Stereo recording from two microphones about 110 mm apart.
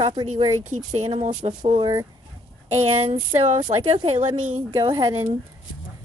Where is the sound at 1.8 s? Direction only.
35° right (ahead or behind).